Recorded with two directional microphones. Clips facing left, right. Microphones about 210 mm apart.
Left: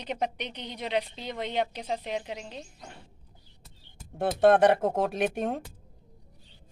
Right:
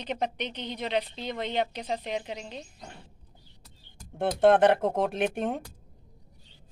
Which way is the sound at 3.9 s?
5° left (ahead or behind).